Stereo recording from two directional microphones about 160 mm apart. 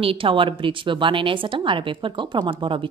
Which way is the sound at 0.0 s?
35° right (ahead or behind).